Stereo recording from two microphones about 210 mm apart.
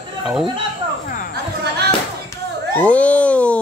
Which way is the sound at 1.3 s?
50° right (ahead or behind).